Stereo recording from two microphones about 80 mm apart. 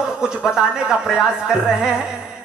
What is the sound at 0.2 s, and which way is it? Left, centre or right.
A man's voice, centre.